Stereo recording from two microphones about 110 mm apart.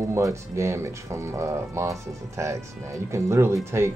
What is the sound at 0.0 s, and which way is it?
Speech, 25° right (ahead or behind).